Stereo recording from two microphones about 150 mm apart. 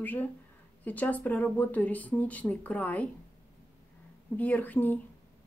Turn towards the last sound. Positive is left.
turn(degrees=10)  # may be behind; listen again after turning